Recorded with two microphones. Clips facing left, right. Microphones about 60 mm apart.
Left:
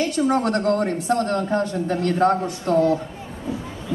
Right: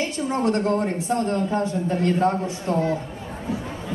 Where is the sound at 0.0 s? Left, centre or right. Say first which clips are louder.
Left 3 dB; left.